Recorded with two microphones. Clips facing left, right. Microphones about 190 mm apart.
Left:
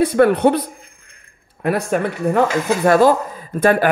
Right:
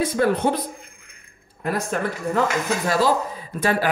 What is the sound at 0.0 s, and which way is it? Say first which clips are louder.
A man's voice: left 7 dB; 65° left (ahead or behind).